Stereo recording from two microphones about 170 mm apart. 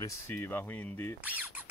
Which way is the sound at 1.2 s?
10° right (ahead or behind).